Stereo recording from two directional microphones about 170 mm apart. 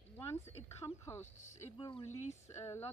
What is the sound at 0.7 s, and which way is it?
Speech, 15° left (ahead or behind).